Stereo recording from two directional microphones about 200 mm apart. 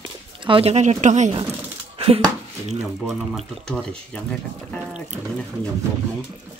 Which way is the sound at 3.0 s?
Centre (ahead or behind).